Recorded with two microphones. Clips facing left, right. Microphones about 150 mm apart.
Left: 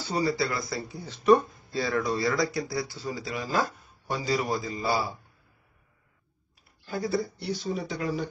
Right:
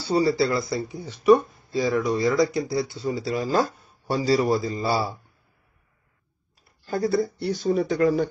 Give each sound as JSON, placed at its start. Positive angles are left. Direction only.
{"t": 0.0, "sound": "a man's voice", "side_deg": -30}
{"t": 6.9, "sound": "speech", "side_deg": -45}